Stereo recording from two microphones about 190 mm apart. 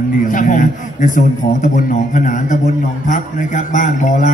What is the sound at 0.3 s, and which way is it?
A man's voice, 45° left (ahead or behind).